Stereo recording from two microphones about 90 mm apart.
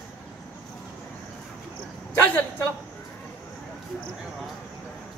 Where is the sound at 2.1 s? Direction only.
20° left (ahead or behind).